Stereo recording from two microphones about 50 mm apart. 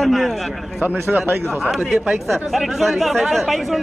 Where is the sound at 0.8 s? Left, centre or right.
Right.